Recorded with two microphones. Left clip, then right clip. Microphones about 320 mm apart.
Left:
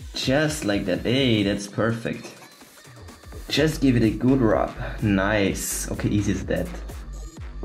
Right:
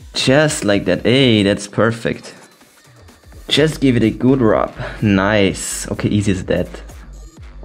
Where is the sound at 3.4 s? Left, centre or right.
Right.